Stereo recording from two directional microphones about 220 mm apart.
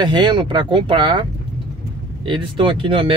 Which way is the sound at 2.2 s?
20° right (ahead or behind).